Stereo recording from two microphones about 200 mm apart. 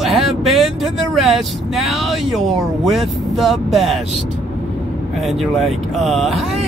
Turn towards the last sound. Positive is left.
turn(degrees=0)  # may be behind; listen again after turning